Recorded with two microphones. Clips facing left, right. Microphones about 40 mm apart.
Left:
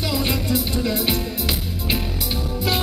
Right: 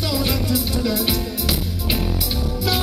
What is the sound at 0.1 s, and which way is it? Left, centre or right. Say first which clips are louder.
Music: right 1 dB; left.